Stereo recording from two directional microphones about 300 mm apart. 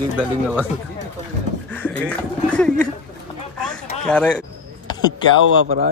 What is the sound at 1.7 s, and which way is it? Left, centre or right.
Speech, centre.